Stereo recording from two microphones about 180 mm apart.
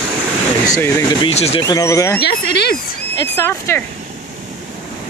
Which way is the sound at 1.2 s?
35° left (ahead or behind).